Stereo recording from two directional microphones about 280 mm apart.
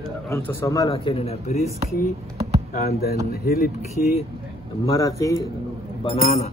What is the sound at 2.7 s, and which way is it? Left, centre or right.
Speech, left.